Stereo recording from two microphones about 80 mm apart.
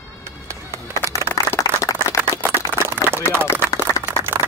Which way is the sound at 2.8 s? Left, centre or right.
Right.